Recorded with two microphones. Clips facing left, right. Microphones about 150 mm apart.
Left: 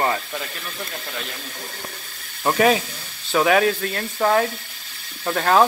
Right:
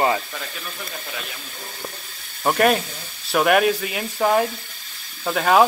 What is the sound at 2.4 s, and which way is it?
Speech, centre (ahead or behind).